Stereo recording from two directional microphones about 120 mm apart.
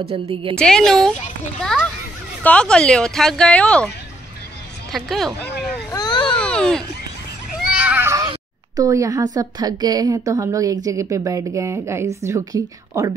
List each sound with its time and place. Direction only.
0.1 s a woman's voice: 55° right (ahead or behind)
0.6 s a woman's voice: 5° left (ahead or behind)
4.9 s a woman's voice: centre (ahead or behind)
5.9 s baby cry: 35° left (ahead or behind)
6.3 s a sound: 10° left (ahead or behind)
7.5 s a sound: 10° right (ahead or behind)
8.7 s a woman's voice: 25° right (ahead or behind)